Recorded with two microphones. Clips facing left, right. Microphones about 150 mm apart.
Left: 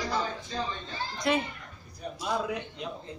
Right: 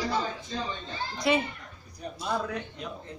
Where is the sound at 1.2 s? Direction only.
5° right (ahead or behind); by 2.8 s 15° left (ahead or behind).